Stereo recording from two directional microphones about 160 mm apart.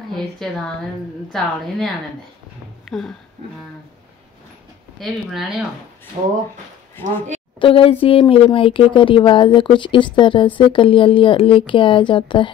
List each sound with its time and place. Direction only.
1.3 s speech: centre (ahead or behind)
2.8 s a sound: 5° left (ahead or behind)
4.9 s speech: centre (ahead or behind)
6.2 s speech: 35° right (ahead or behind)
7.0 s speech: 15° left (ahead or behind)
7.5 s speech: 35° left (ahead or behind)